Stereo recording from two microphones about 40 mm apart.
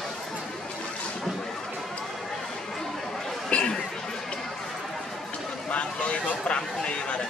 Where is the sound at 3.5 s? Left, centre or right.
Left.